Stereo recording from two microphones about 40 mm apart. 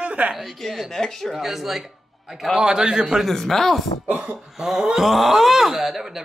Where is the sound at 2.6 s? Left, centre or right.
Centre.